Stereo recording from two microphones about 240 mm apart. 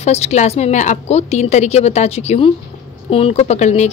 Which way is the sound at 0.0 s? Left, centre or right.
Left.